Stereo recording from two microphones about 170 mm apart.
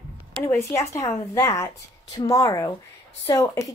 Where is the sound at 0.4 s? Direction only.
15° left (ahead or behind).